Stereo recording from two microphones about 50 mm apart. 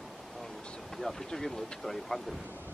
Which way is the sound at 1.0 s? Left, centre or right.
Centre.